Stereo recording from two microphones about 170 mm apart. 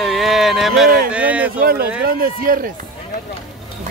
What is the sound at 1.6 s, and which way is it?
Speech, 65° right (ahead or behind).